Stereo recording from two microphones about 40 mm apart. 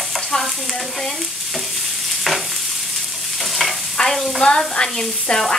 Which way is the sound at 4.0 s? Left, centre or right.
Centre.